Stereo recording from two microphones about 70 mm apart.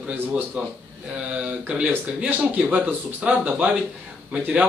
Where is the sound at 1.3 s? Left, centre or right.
Centre.